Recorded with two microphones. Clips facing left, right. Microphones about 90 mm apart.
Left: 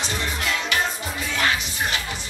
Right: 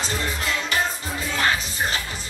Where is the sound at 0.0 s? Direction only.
35° right (ahead or behind).